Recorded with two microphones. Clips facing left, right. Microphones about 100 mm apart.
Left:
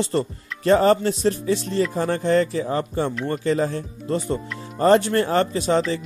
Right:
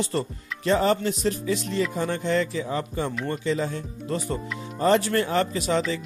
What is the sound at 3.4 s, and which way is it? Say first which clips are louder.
Speech: left 6 dB; 45° left (ahead or behind).